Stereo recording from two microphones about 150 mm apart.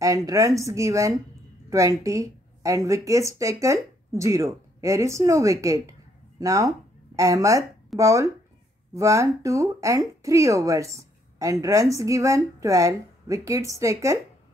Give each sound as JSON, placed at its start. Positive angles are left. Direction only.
{"t": 0.0, "sound": "speech", "side_deg": -20}